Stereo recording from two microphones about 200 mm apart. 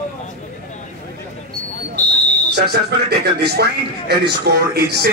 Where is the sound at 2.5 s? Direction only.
55° right (ahead or behind).